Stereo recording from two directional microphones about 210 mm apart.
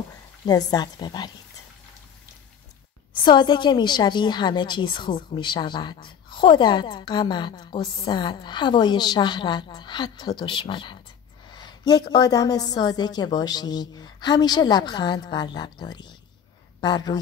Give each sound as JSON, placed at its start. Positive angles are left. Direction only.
{"t": 0.5, "sound": "a woman's voice", "side_deg": 20}
{"t": 3.1, "sound": "a woman's voice", "side_deg": 20}